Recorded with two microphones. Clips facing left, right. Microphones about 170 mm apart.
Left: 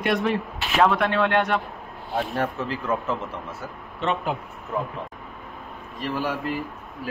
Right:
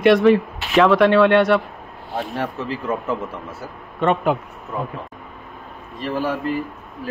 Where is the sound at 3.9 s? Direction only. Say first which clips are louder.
Right 7 dB; 55° right (ahead or behind).